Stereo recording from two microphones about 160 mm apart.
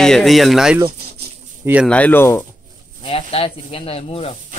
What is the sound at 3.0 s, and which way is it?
Speech, 35° left (ahead or behind).